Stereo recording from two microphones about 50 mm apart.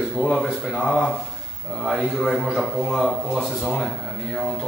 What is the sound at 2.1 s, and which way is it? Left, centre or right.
Speech, centre.